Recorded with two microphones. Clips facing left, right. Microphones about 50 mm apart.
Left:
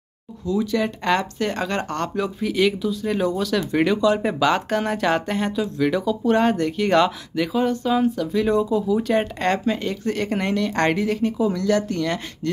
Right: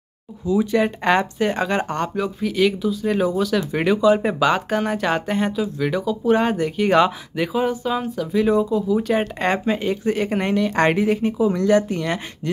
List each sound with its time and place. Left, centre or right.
0.7 s speech: right
2.1 s speech: centre